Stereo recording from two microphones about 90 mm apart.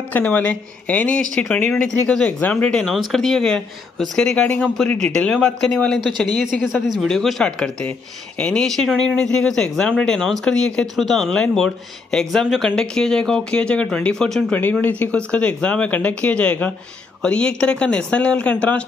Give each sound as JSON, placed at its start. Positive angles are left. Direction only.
{"t": 0.1, "sound": "speech", "side_deg": 15}
{"t": 14.5, "sound": "speech", "side_deg": 20}